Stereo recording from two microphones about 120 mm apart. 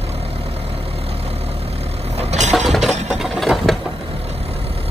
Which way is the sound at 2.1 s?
65° right (ahead or behind).